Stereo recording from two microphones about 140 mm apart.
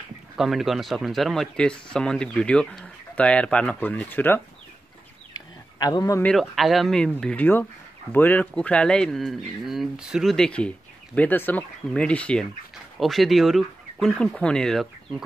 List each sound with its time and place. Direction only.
0.4 s speech: centre (ahead or behind); by 4.4 s 15° left (ahead or behind)
5.3 s a sound: 25° left (ahead or behind)
6.2 s speech: centre (ahead or behind)